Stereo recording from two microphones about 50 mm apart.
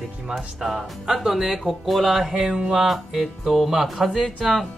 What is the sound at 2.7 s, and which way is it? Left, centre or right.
Speech, centre.